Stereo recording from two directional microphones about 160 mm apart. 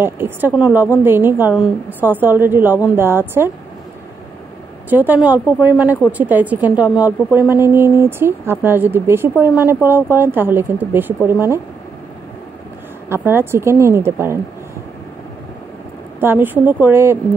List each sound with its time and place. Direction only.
0.0 s a woman's voice: 15° right (ahead or behind)
4.8 s a woman's voice: 10° right (ahead or behind)
13.1 s a woman's voice: 15° right (ahead or behind)
16.2 s a woman's voice: 15° right (ahead or behind)